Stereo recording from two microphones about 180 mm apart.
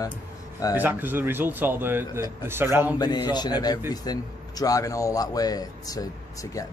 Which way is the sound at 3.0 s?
25° left (ahead or behind).